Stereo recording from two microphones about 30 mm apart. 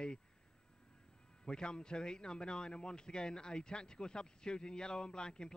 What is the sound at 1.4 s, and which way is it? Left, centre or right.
A man's voice, left.